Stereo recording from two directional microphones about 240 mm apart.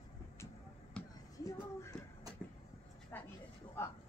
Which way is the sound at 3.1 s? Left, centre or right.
Centre.